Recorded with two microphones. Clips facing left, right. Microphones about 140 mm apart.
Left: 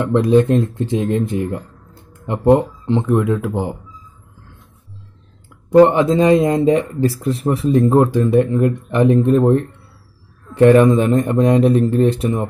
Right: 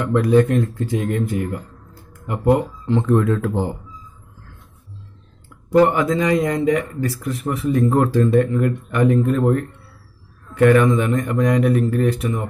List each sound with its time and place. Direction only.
0.0 s speech: 25° left (ahead or behind)
5.7 s speech: 25° left (ahead or behind)